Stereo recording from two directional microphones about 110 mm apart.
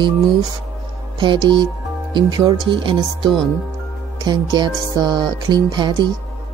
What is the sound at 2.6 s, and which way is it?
Speech, 50° right (ahead or behind).